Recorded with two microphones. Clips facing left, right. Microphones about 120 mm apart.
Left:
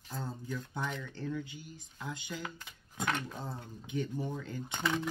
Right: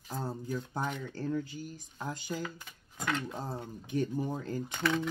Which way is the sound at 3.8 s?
40° right (ahead or behind).